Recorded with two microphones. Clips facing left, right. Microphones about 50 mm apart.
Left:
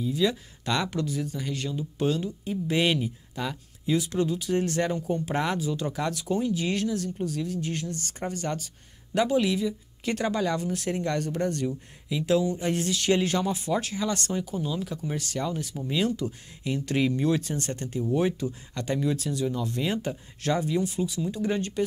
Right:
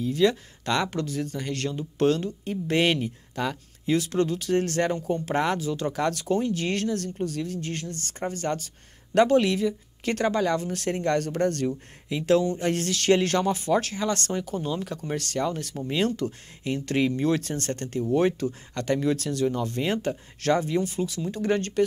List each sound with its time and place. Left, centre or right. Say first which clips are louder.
0.0 s speech: right 3 dB; right
2.4 s speech: right 2 dB; right
14.9 s speech: right 2 dB; right
18.0 s speech: right 3 dB; right
18.4 s speech: right 3 dB; right
19.5 s speech: right 2 dB; right